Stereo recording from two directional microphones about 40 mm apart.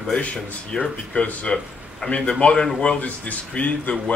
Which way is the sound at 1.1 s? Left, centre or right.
Left.